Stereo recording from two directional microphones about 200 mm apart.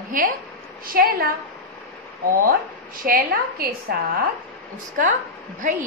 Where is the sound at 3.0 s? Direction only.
50° right (ahead or behind).